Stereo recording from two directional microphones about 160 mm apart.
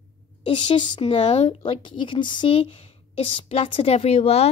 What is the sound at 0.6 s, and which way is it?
A woman's voice, 30° left (ahead or behind).